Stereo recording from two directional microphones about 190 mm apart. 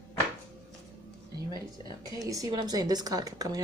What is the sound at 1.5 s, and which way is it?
Speech, 25° left (ahead or behind).